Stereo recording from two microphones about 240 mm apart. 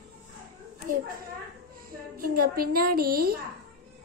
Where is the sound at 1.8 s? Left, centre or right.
Right.